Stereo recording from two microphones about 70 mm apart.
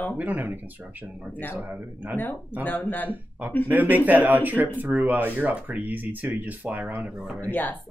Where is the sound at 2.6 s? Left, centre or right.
Left.